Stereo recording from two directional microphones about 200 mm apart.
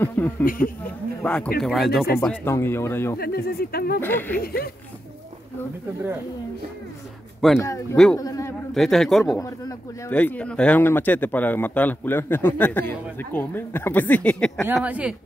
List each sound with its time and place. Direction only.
0.0 s a sound: 10° left (ahead or behind)
0.8 s speech: 5° left (ahead or behind)
2.2 s speech: 10° left (ahead or behind)
3.2 s speech: 50° left (ahead or behind)
4.0 s speech: 10° left (ahead or behind)
4.4 s speech: 50° left (ahead or behind)
7.5 s speech: 15° left (ahead or behind)
8.7 s speech: centre (ahead or behind)
9.2 s speech: 15° left (ahead or behind)
14.8 s speech: 5° right (ahead or behind)